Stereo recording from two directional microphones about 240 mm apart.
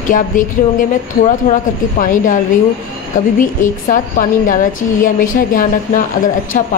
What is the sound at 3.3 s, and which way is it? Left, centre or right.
Speech, left.